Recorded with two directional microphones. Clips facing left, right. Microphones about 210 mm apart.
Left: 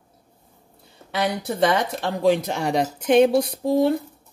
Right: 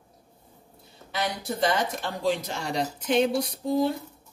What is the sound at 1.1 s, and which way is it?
Speech, 60° left (ahead or behind).